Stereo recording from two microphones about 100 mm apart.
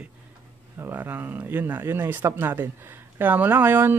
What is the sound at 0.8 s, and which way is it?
Speech, 20° right (ahead or behind).